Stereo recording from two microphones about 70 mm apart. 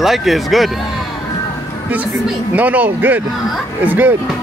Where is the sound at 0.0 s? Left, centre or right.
Centre.